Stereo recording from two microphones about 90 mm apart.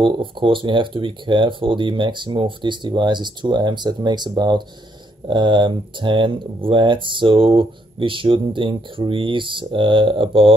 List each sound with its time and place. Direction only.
0.0 s speech: 65° right (ahead or behind)